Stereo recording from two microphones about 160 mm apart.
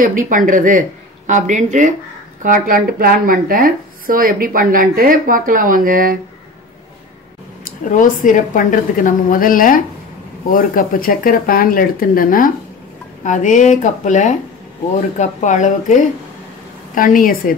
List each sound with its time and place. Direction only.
0.0 s speech: 55° right (ahead or behind)
7.6 s speech: 55° left (ahead or behind)